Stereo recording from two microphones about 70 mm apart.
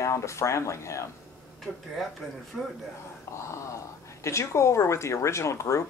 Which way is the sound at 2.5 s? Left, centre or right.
Centre.